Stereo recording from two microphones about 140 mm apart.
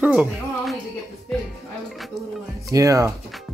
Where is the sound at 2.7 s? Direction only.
25° right (ahead or behind).